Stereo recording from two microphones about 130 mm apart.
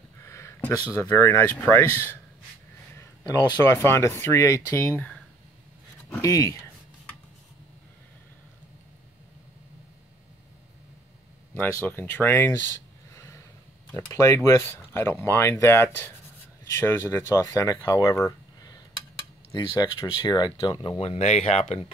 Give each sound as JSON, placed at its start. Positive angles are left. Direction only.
{"t": 0.2, "sound": "speech", "side_deg": 20}
{"t": 3.6, "sound": "speech", "side_deg": 20}
{"t": 6.0, "sound": "speech", "side_deg": 20}
{"t": 11.5, "sound": "speech", "side_deg": 15}
{"t": 13.1, "sound": "a sound", "side_deg": 25}
{"t": 13.9, "sound": "speech", "side_deg": 25}
{"t": 21.0, "sound": "speech", "side_deg": 55}